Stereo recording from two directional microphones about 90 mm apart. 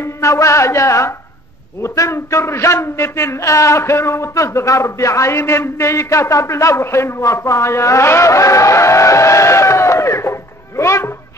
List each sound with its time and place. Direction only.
0.0 s a man's voice: 35° left (ahead or behind)